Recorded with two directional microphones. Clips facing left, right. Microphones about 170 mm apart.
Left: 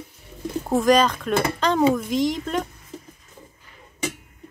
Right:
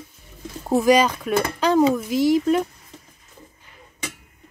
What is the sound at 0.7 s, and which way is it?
A woman's voice, 10° right (ahead or behind).